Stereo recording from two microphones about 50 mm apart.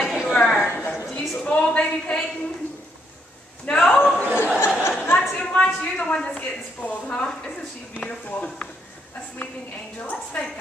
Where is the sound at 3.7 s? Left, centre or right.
Left.